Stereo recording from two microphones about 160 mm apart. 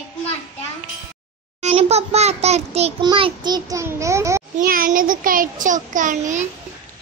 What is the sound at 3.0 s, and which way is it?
Child singing, 30° right (ahead or behind).